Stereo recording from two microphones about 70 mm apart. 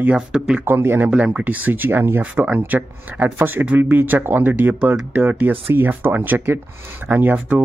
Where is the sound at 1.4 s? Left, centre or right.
Right.